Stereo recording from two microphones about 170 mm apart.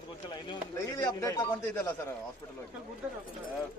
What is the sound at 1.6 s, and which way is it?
Speech, 10° left (ahead or behind).